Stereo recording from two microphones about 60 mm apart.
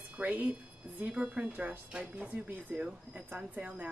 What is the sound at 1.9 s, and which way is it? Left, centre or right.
A woman's voice, centre.